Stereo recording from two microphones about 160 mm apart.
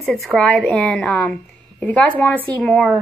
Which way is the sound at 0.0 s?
Centre (ahead or behind).